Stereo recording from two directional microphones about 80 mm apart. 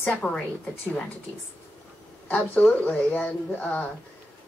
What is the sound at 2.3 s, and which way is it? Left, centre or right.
Speech, centre.